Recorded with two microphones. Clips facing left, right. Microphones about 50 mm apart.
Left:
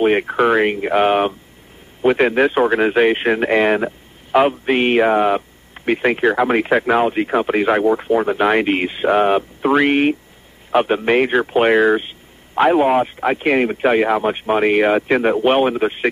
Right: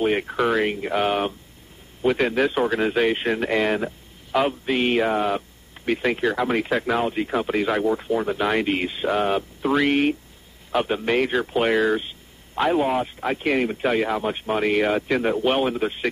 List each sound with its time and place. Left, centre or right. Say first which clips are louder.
0.0 s a man's voice: left 6 dB; left